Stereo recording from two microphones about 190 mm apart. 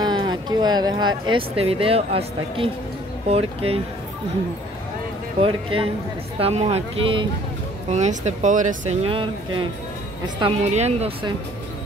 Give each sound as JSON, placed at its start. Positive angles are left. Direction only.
{"t": 0.0, "sound": "speech", "side_deg": -20}
{"t": 5.4, "sound": "speech", "side_deg": -30}
{"t": 10.6, "sound": "speech", "side_deg": -35}